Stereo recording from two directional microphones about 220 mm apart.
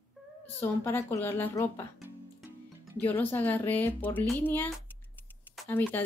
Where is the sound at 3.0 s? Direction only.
10° left (ahead or behind).